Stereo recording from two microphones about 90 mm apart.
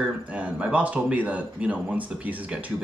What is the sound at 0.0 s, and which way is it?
Speech, 15° right (ahead or behind).